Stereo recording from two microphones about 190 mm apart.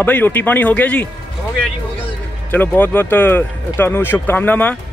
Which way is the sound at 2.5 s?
10° left (ahead or behind).